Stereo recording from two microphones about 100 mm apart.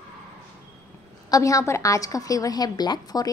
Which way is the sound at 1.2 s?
35° left (ahead or behind).